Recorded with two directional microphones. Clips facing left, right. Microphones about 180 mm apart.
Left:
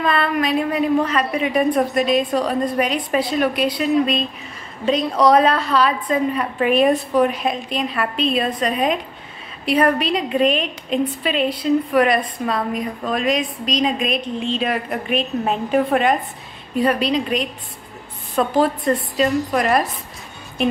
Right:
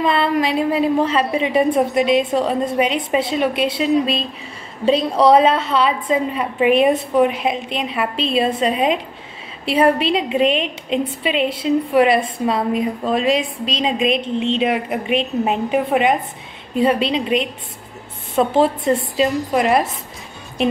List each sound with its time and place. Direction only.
0.0 s a woman's voice: 25° right (ahead or behind)